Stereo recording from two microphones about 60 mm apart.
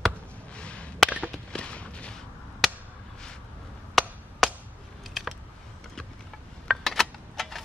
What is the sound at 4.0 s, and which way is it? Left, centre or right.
Chop, centre.